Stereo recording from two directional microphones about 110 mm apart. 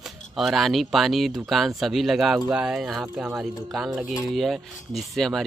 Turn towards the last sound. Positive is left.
turn(degrees=0)  # may be behind; listen again after turning